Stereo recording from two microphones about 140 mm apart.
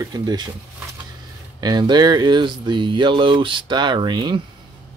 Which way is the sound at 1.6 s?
30° right (ahead or behind).